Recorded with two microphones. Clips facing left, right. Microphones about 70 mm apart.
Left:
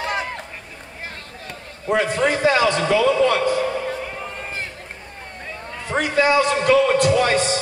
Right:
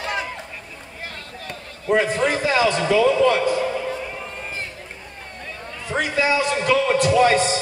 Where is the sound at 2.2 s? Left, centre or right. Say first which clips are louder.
Left 2 dB; left.